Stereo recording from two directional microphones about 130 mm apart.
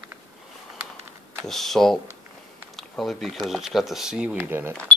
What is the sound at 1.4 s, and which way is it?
Speech, centre (ahead or behind).